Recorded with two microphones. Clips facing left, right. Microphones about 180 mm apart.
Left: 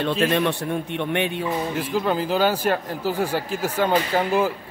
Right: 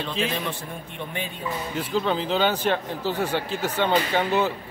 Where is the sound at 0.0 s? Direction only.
65° left (ahead or behind).